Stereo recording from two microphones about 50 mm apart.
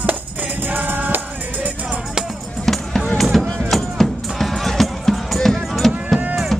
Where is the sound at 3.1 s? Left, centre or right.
Centre.